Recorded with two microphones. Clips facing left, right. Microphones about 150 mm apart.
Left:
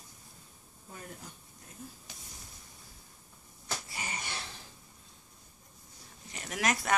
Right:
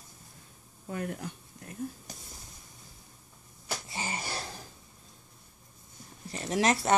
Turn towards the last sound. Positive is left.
turn(degrees=-30)  # may be behind; listen again after turning